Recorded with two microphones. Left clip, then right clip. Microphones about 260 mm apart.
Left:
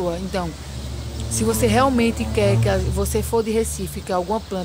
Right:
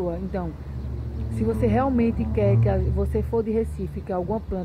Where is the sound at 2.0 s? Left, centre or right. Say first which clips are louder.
Left 4 dB; left.